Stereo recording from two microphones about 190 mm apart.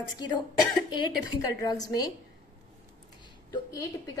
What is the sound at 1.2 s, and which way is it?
Speech, 20° left (ahead or behind).